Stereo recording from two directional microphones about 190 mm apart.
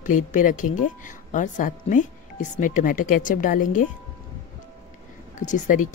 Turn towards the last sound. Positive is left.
turn(degrees=40)  # may be behind; listen again after turning